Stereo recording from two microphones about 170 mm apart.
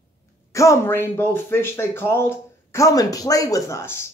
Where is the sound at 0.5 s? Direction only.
15° left (ahead or behind).